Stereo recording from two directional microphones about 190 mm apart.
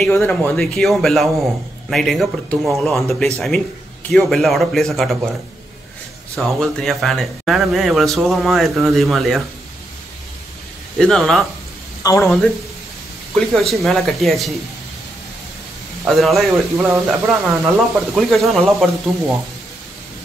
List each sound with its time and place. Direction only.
0.0 s speech: 5° left (ahead or behind)
6.3 s speech: centre (ahead or behind)
11.0 s speech: centre (ahead or behind)
12.0 s speech: 20° left (ahead or behind)
13.3 s speech: centre (ahead or behind)
16.1 s speech: centre (ahead or behind)
16.7 s speech: 15° right (ahead or behind)
17.5 s speech: centre (ahead or behind)